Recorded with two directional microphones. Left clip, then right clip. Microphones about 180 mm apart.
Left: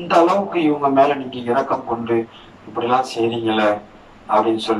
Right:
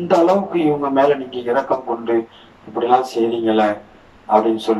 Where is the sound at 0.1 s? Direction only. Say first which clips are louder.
Even; 35° right (ahead or behind).